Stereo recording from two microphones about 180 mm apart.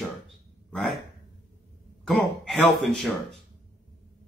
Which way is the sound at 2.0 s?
Centre (ahead or behind).